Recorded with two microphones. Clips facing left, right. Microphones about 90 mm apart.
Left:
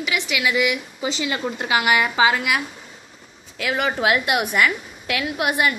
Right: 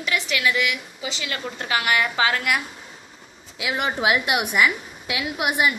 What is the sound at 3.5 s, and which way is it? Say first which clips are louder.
A woman's voice: left 2 dB; 10° right (ahead or behind).